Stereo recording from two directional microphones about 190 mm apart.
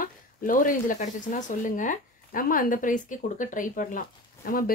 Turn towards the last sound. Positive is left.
turn(degrees=50)  # may be behind; listen again after turning